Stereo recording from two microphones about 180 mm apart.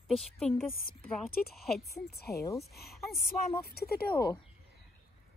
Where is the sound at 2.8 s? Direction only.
55° left (ahead or behind).